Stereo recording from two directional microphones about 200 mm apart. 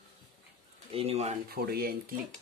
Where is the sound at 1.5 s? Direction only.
50° right (ahead or behind).